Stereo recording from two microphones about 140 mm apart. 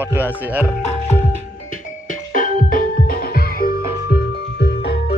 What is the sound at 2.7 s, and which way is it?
Music, 90° left.